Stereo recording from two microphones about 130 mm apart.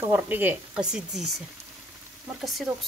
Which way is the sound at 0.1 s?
15° right (ahead or behind).